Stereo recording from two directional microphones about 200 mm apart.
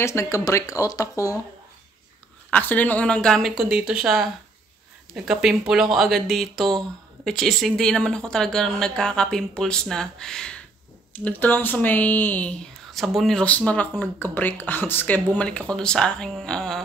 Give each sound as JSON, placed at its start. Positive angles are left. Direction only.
{"t": 0.0, "sound": "speech", "side_deg": 15}
{"t": 2.5, "sound": "a woman's voice", "side_deg": 10}